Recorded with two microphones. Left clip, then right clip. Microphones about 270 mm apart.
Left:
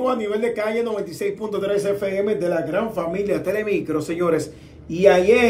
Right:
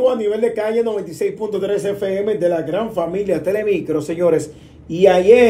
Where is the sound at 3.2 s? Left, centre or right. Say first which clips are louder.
Right 3 dB; centre.